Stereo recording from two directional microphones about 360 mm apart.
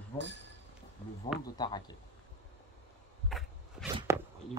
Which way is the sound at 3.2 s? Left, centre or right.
Centre.